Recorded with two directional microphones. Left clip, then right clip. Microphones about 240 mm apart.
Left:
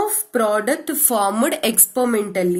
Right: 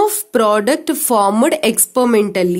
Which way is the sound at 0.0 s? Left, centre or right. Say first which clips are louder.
Right 6 dB; right.